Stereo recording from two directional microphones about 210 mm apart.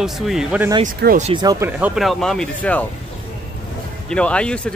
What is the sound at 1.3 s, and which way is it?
Speech, 20° right (ahead or behind).